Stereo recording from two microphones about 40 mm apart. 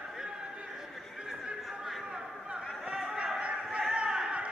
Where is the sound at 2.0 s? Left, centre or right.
Right.